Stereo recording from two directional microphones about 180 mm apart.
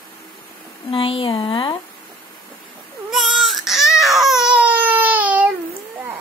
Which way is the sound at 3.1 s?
Centre (ahead or behind).